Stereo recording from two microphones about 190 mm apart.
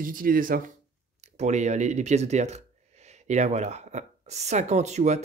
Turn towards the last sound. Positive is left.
turn(degrees=-35)  # may be behind; listen again after turning